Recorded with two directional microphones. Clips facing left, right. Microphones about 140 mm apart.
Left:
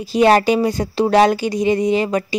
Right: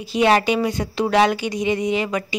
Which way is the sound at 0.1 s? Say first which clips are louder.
Left 4 dB; 40° left (ahead or behind).